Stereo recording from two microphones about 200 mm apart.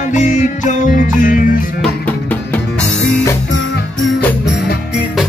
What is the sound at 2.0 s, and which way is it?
Music, 10° left (ahead or behind).